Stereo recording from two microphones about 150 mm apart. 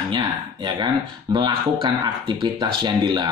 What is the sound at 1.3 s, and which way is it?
Speech, 35° right (ahead or behind).